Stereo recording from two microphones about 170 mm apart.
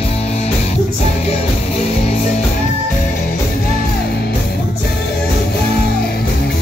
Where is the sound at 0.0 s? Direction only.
35° left (ahead or behind).